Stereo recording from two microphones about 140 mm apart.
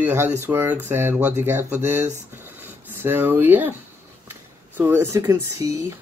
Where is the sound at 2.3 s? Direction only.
15° right (ahead or behind).